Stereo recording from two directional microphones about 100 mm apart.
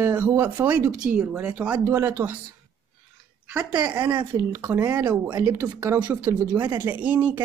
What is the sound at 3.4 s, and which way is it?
Speech, 15° right (ahead or behind).